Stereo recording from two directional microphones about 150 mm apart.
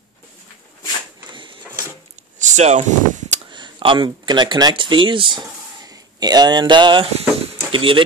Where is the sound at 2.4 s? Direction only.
50° right (ahead or behind).